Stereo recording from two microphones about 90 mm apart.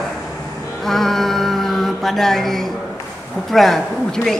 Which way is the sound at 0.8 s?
Centre (ahead or behind).